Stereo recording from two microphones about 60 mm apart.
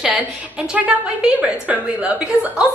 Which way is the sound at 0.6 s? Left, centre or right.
Centre.